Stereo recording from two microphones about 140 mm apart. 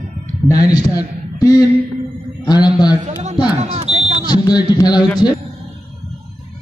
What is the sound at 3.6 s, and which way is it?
Smoke detector, 50° right (ahead or behind).